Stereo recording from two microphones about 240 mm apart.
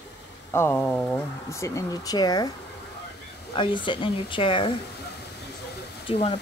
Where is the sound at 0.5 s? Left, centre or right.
Centre.